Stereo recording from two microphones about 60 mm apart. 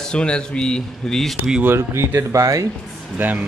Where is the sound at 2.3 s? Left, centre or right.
Right.